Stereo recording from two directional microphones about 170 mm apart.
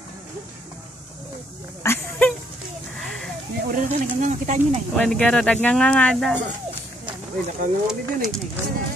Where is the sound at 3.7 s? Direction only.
50° right (ahead or behind).